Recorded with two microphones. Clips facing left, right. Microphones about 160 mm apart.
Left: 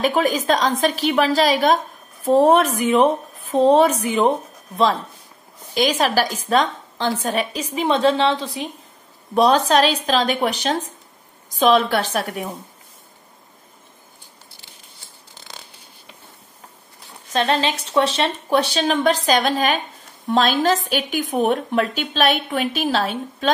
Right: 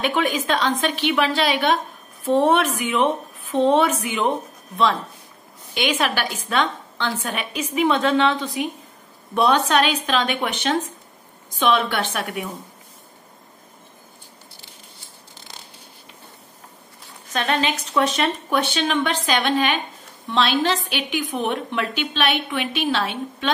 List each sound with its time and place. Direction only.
0.0 s a woman's voice: 40° left (ahead or behind)
5.8 s a woman's voice: 35° left (ahead or behind)
17.3 s a woman's voice: 30° left (ahead or behind)